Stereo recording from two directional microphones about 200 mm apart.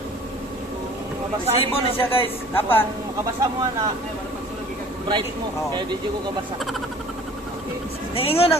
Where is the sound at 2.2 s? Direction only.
30° left (ahead or behind).